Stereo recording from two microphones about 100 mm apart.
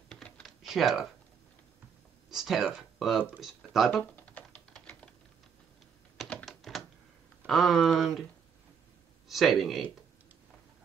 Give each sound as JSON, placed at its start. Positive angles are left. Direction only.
{"t": 0.1, "sound": "typing", "side_deg": 5}
{"t": 2.2, "sound": "speech", "side_deg": -5}
{"t": 3.9, "sound": "typing", "side_deg": 15}
{"t": 6.4, "sound": "typewriter", "side_deg": 0}
{"t": 7.4, "sound": "speech", "side_deg": 0}
{"t": 9.3, "sound": "speech", "side_deg": 0}